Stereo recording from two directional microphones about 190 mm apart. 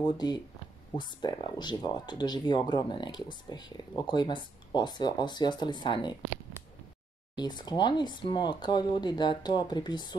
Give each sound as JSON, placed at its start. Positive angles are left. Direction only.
{"t": 0.0, "sound": "speech", "side_deg": 20}
{"t": 7.3, "sound": "speech", "side_deg": 20}